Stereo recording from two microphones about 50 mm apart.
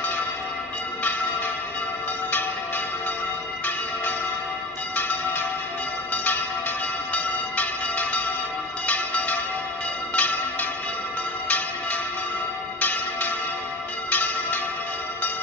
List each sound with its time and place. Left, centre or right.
4.9 s church bell: left
7.2 s bell: left
14.1 s bell: left